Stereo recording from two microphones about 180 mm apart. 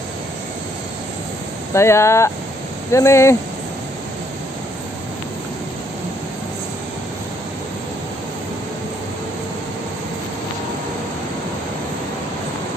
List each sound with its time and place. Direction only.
1.7 s speech: 15° left (ahead or behind)